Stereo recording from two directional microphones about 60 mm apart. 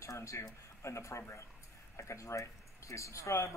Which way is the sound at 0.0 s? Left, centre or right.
Left.